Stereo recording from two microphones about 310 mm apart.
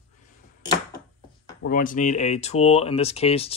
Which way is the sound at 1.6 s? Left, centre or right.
Left.